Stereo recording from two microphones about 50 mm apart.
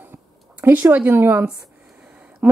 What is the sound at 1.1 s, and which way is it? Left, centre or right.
Speech, right.